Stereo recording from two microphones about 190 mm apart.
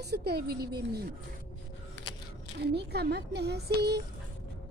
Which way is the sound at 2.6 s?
60° right (ahead or behind).